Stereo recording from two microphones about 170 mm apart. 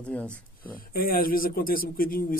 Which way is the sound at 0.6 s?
55° left (ahead or behind).